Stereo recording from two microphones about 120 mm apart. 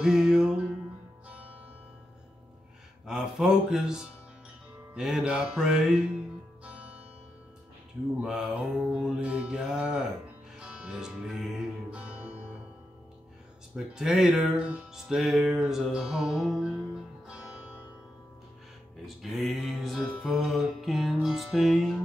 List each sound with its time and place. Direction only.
0.0 s music: 5° right (ahead or behind)
3.1 s mantra: 5° right (ahead or behind)
8.2 s mantra: 5° right (ahead or behind)
10.6 s music: 10° right (ahead or behind)
13.7 s mantra: 5° right (ahead or behind)
14.7 s music: 5° right (ahead or behind)
19.0 s music: centre (ahead or behind)